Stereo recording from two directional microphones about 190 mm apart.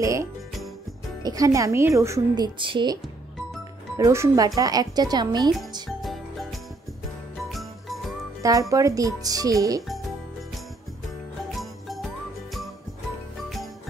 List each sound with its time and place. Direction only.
0.0 s music: 15° right (ahead or behind)
1.2 s speech: 20° right (ahead or behind)
4.0 s speech: 15° right (ahead or behind)
5.9 s music: centre (ahead or behind)
7.4 s jingle bell: centre (ahead or behind)
8.4 s speech: 15° right (ahead or behind)
11.5 s music: centre (ahead or behind)